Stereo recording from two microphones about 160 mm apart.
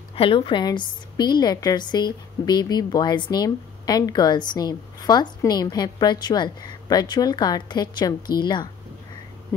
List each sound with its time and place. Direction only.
0.1 s a woman's voice: 35° left (ahead or behind)